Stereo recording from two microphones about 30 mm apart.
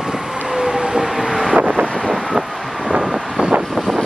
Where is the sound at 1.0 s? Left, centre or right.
Centre.